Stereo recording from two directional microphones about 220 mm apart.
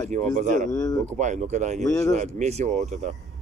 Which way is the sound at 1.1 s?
35° right (ahead or behind).